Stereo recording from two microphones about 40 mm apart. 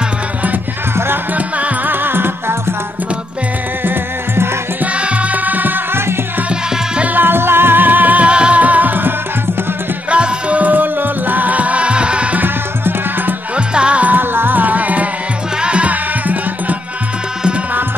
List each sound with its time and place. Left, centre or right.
0.9 s music: right
1.9 s music: right
3.8 s music: right
4.9 s music: right
7.2 s music: right
8.3 s music: right
10.1 s music: right
10.6 s music: right
12.4 s music: right
13.7 s music: right
14.0 s music: right
15.6 s music: right